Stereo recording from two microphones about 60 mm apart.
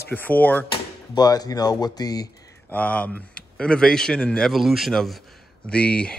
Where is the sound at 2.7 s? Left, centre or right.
Left.